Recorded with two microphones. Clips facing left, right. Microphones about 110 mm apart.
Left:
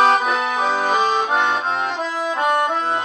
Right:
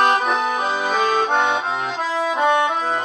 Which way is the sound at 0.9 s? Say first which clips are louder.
Right 3 dB; 15° left (ahead or behind).